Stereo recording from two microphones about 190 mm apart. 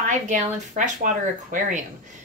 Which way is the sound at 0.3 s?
40° right (ahead or behind).